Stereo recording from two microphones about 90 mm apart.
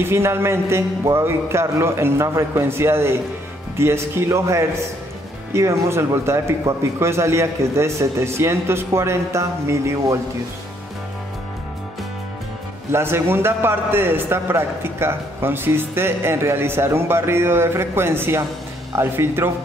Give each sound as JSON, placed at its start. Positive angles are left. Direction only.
{"t": 0.0, "sound": "a man's voice", "side_deg": -30}
{"t": 12.9, "sound": "a man's voice", "side_deg": -25}